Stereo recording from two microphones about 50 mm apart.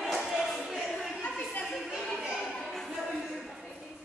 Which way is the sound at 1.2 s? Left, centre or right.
Left.